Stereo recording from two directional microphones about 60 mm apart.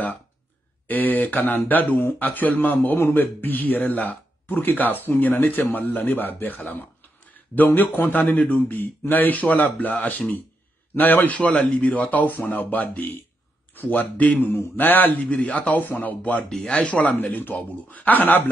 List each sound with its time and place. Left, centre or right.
0.8 s a man's voice: left
16.4 s speech: centre
17.0 s speech: left